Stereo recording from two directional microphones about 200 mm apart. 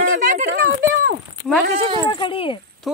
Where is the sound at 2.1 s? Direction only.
25° left (ahead or behind).